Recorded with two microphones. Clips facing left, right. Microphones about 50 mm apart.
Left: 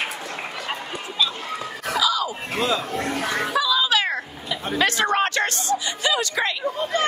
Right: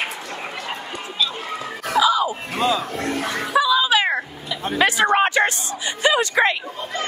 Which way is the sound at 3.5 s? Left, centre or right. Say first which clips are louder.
Right 5 dB; centre.